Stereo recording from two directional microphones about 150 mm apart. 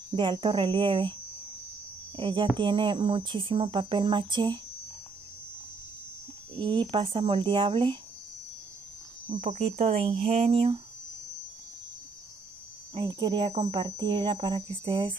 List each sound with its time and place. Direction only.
0.1 s speech: 35° right (ahead or behind)
2.1 s speech: 35° right (ahead or behind)
6.5 s speech: 35° right (ahead or behind)
9.4 s speech: 45° right (ahead or behind)
12.9 s speech: 30° right (ahead or behind)